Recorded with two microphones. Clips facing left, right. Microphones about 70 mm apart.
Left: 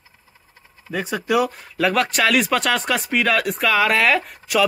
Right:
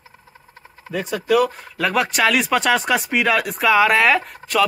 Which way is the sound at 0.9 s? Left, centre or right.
Centre.